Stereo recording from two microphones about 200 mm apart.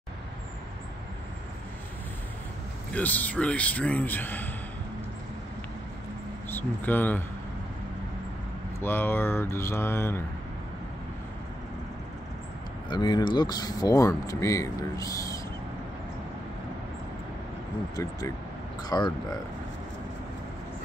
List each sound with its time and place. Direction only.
2.9 s speech: 10° left (ahead or behind)
6.5 s speech: 10° left (ahead or behind)
8.8 s speech: 10° left (ahead or behind)
12.9 s speech: 20° left (ahead or behind)
18.8 s speech: 20° left (ahead or behind)